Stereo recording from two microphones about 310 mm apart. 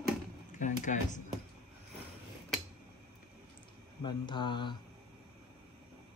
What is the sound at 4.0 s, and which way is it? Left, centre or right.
Speech, centre.